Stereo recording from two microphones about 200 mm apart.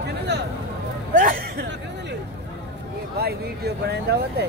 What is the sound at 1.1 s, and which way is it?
Speech, 45° right (ahead or behind).